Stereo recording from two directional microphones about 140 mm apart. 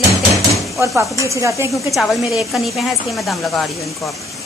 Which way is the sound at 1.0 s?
20° right (ahead or behind).